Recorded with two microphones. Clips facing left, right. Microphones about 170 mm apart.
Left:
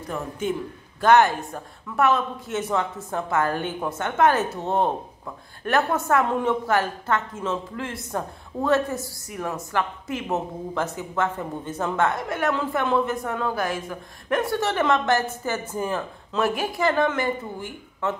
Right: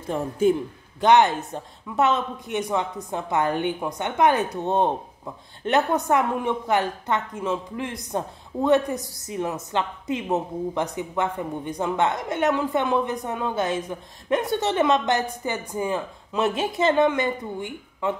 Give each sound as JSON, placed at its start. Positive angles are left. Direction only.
{"t": 0.1, "sound": "a man's voice", "side_deg": -35}
{"t": 1.0, "sound": "a woman's voice", "side_deg": -20}